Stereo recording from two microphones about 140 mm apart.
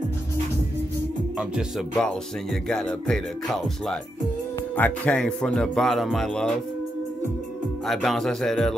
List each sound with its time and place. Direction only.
1.4 s music: 5° right (ahead or behind)
7.8 s music: centre (ahead or behind)